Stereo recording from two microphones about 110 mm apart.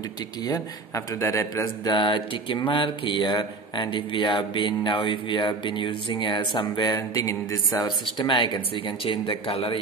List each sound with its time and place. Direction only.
0.5 s a man's voice: 30° left (ahead or behind)
1.9 s speech: 45° left (ahead or behind)